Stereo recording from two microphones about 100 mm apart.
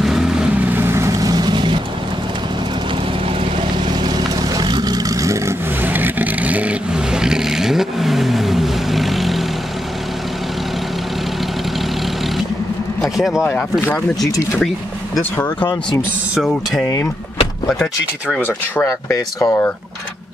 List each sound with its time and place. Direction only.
0.0 s vehicle: 5° right (ahead or behind)
0.7 s vehicle: 20° right (ahead or behind); by 1.8 s 50° right (ahead or behind)
4.6 s vehicle: 45° right (ahead or behind)
5.8 s vehicle: 20° right (ahead or behind); by 9.4 s centre (ahead or behind)
13.0 s vehicle: centre (ahead or behind)
13.5 s speech: 15° left (ahead or behind)
15.9 s speech: 5° left (ahead or behind)
18.9 s speech: 35° left (ahead or behind)